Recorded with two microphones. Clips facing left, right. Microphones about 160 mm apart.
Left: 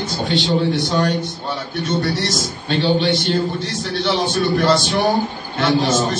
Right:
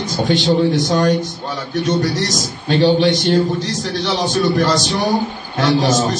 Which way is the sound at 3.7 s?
40° right (ahead or behind).